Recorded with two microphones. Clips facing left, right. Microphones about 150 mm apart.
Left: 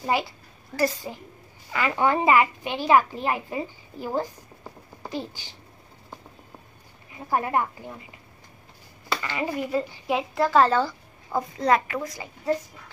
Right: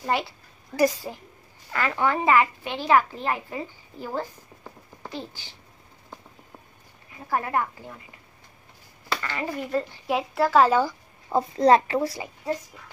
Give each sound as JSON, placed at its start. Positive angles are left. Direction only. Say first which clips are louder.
{"t": 0.0, "sound": "a woman's voice", "louder": "left 1 dB", "side_deg": 5}
{"t": 2.0, "sound": "a woman's voice", "louder": "left 1 dB", "side_deg": 15}
{"t": 7.2, "sound": "a woman's voice", "louder": "left 1 dB", "side_deg": 20}
{"t": 9.2, "sound": "speech", "louder": "left 4 dB", "side_deg": 15}
{"t": 9.7, "sound": "a woman's voice", "louder": "even", "side_deg": 5}
{"t": 11.3, "sound": "a woman's voice", "louder": "right 4 dB", "side_deg": -30}